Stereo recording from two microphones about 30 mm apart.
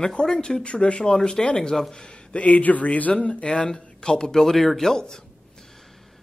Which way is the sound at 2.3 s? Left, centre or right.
Left.